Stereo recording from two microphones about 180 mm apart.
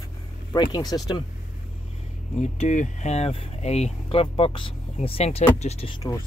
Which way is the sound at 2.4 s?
40° left (ahead or behind).